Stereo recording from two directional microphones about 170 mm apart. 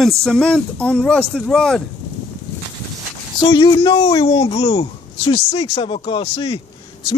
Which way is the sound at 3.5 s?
25° left (ahead or behind).